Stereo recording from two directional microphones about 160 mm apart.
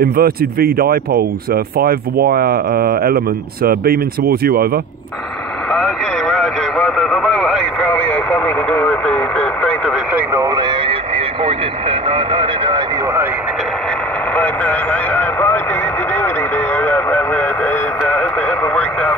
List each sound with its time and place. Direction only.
0.0 s speech: 70° right (ahead or behind)
5.7 s radio: 5° left (ahead or behind)
10.1 s radio: 20° right (ahead or behind)
14.3 s radio: 10° left (ahead or behind)